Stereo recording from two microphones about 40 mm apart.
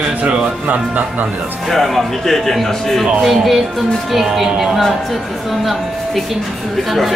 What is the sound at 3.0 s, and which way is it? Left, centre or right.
A woman's voice, centre.